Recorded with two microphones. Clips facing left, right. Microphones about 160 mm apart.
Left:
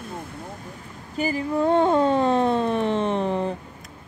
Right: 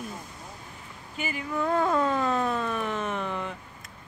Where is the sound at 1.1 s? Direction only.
35° left (ahead or behind).